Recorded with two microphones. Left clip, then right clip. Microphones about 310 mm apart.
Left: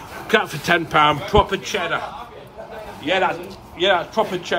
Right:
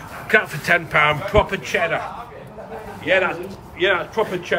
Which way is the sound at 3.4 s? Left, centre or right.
Centre.